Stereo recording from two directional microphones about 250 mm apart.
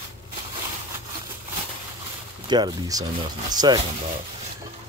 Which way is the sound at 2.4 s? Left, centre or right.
Centre.